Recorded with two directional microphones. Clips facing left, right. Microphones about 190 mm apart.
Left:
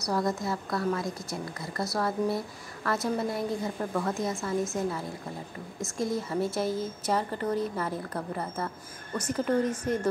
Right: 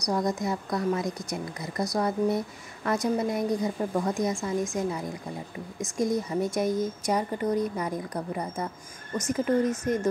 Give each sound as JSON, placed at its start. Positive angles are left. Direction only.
{"t": 0.0, "sound": "a woman's voice", "side_deg": -15}